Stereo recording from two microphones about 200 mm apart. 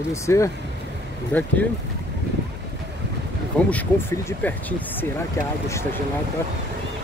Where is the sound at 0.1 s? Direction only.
15° left (ahead or behind).